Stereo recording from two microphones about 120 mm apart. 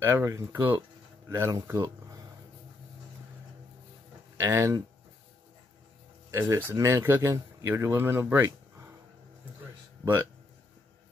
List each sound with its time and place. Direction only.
0.0 s speech: 25° right (ahead or behind)
4.4 s speech: 25° right (ahead or behind)
6.3 s speech: 25° right (ahead or behind)